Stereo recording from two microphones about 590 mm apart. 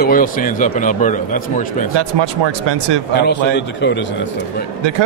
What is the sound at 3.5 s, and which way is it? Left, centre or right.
Speech, centre.